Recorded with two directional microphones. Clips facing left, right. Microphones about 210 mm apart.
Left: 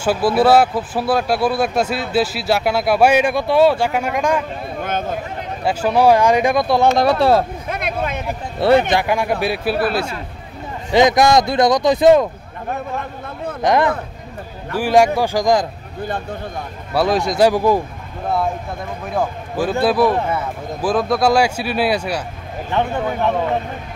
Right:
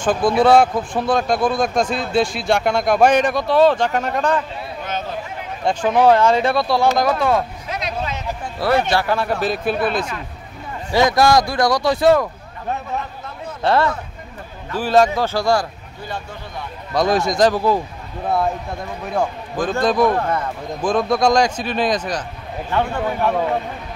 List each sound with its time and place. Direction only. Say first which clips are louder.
0.0 s speech: even; 5° left (ahead or behind)
4.8 s a sound: left 4 dB; 55° left (ahead or behind)
5.6 s speech: even; 5° left (ahead or behind)
7.0 s speech: left 3 dB; 35° left (ahead or behind)
7.6 s a sound: left 3 dB; 55° left (ahead or behind)
8.5 s speech: left 4 dB; 25° left (ahead or behind); by 10.0 s 5° left (ahead or behind)
10.9 s a man's voice: left 2 dB; 20° left (ahead or behind)
13.6 s speech: left 2 dB; 15° left (ahead or behind)
16.9 s speech: even; 5° left (ahead or behind)
19.0 s a man's voice: even; 5° left (ahead or behind)